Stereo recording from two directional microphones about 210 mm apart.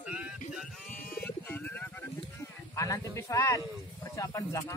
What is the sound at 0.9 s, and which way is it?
Bird, 10° left (ahead or behind).